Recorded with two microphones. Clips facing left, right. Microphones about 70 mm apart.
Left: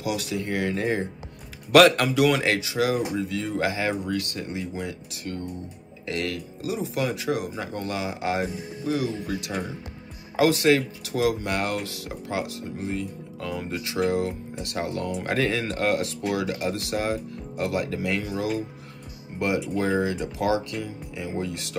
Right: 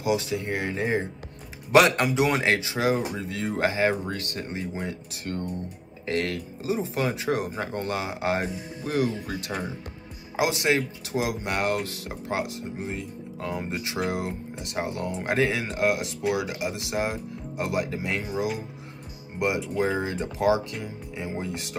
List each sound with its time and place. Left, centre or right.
0.0 s speech: right
8.8 s speech: right
10.3 s speech: right
19.3 s speech: right